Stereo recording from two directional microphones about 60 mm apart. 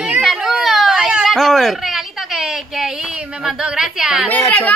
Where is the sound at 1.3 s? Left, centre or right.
Centre.